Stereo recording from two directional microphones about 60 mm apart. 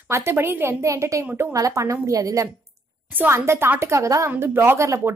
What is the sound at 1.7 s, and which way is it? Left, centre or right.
Speech, right.